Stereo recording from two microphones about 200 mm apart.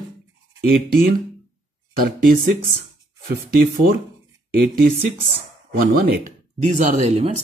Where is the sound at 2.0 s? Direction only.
45° right (ahead or behind).